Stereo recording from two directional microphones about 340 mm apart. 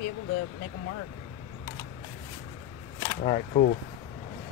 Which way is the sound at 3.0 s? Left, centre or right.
Centre.